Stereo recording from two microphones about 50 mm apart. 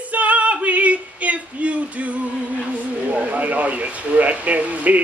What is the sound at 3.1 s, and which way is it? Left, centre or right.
Speech, right.